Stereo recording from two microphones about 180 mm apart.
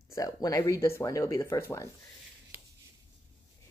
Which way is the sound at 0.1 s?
20° left (ahead or behind).